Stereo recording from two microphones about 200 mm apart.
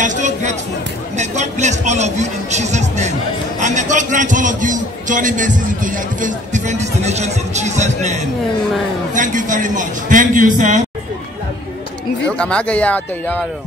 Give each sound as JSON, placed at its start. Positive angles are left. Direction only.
{"t": 0.0, "sound": "a sound", "side_deg": -40}
{"t": 1.1, "sound": "a man's voice", "side_deg": -35}
{"t": 12.4, "sound": "speech", "side_deg": 5}